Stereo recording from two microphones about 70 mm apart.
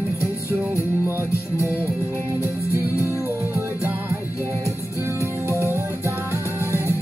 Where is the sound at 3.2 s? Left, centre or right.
Right.